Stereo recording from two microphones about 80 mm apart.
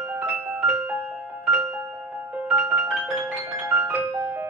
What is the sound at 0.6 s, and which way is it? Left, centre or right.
Music, right.